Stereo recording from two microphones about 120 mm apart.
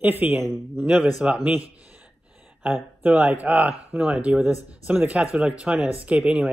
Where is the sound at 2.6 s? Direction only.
15° right (ahead or behind).